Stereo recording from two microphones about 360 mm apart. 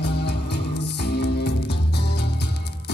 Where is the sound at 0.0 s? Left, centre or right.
Left.